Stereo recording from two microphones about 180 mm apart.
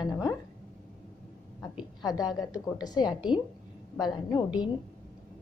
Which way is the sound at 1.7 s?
20° left (ahead or behind).